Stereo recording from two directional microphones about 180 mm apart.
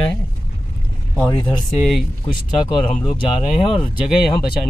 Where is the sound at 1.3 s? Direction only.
25° left (ahead or behind).